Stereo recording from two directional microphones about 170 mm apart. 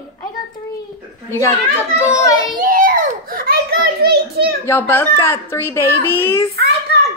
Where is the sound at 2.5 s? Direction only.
55° right (ahead or behind).